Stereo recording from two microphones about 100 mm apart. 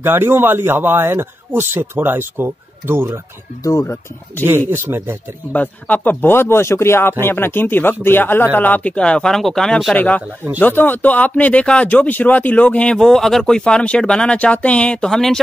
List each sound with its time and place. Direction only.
0.0 s a man's voice: 20° right (ahead or behind)
3.6 s speech: 30° left (ahead or behind)
4.5 s a man's voice: 25° right (ahead or behind)
5.5 s speech: 15° left (ahead or behind)
9.9 s speech: 15° left (ahead or behind)